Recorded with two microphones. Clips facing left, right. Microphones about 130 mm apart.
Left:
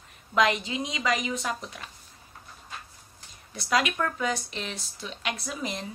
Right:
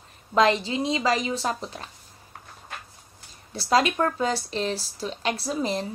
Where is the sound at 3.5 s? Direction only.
30° right (ahead or behind).